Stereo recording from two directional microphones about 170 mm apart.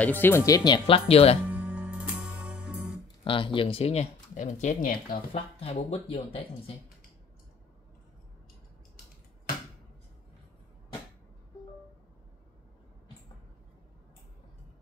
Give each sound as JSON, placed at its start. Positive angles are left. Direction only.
{"t": 0.0, "sound": "speech", "side_deg": 10}
{"t": 0.5, "sound": "speech", "side_deg": 25}
{"t": 1.5, "sound": "music", "side_deg": -10}
{"t": 3.3, "sound": "speech", "side_deg": 30}
{"t": 5.3, "sound": "speech", "side_deg": 35}